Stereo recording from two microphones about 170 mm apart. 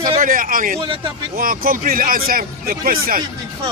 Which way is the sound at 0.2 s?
55° right (ahead or behind).